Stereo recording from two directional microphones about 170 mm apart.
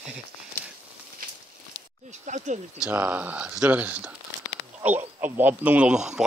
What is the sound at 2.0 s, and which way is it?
Speech, 45° right (ahead or behind).